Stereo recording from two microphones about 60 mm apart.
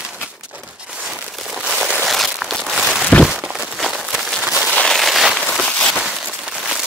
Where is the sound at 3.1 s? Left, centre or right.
Centre.